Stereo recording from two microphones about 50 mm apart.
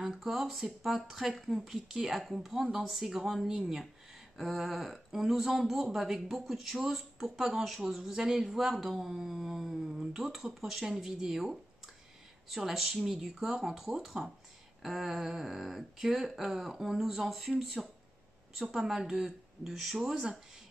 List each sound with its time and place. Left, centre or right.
0.0 s speech: centre